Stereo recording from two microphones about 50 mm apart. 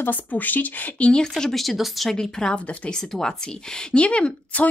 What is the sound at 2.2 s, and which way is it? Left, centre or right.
A woman's voice, centre.